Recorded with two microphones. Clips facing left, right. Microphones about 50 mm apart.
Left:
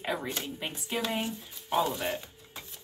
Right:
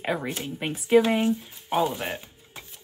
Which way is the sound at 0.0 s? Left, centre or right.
Right.